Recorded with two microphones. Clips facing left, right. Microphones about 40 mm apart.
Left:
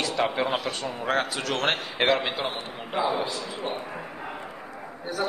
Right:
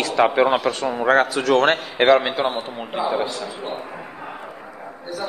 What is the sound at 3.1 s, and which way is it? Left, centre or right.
Speech, right.